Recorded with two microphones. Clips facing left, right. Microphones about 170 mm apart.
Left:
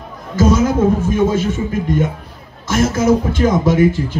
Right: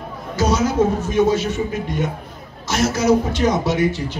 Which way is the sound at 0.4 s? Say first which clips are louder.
Left 4 dB; 50° left (ahead or behind).